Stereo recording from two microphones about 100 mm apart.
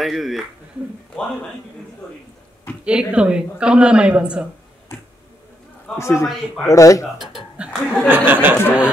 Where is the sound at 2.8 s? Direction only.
10° right (ahead or behind).